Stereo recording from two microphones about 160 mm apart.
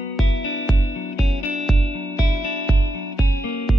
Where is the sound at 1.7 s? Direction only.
35° right (ahead or behind).